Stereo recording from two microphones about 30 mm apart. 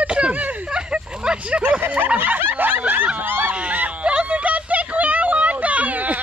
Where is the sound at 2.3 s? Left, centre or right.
Right.